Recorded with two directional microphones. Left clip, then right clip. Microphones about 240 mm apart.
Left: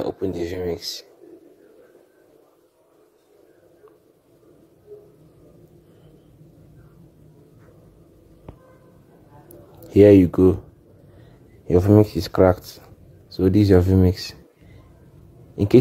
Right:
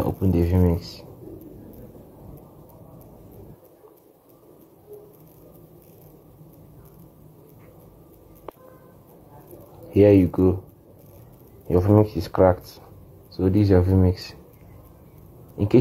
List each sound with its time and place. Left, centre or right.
0.0 s speech: left
9.9 s speech: left
11.6 s speech: left
15.5 s speech: left